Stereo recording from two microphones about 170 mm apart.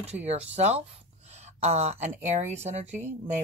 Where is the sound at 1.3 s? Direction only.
40° right (ahead or behind).